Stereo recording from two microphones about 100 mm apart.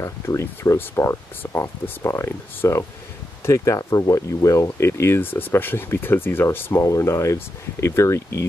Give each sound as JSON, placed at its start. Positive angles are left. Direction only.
{"t": 0.0, "sound": "speech", "side_deg": 30}